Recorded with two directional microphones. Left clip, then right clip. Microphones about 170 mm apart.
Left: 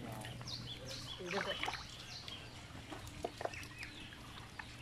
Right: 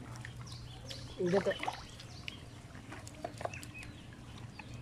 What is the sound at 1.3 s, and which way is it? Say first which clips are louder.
Speech: right 5 dB; 40° right (ahead or behind).